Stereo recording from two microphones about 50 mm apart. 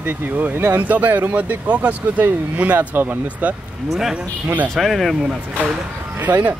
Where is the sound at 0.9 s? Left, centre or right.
Right.